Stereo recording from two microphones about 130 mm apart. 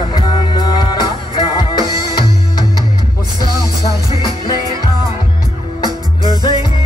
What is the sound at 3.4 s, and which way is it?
Music, 30° right (ahead or behind).